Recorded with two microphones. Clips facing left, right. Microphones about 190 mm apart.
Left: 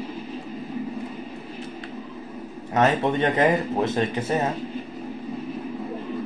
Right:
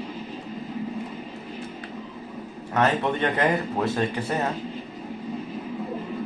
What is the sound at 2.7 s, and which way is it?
Speech, 20° left (ahead or behind).